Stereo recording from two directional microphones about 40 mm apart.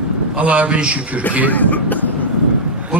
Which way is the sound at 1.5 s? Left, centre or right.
Left.